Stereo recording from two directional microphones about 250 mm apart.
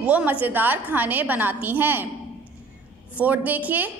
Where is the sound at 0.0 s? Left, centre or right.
Centre.